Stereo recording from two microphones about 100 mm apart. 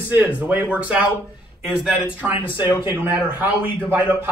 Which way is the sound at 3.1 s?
20° right (ahead or behind).